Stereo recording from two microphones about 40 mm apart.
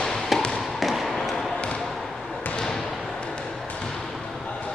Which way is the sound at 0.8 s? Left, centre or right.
Centre.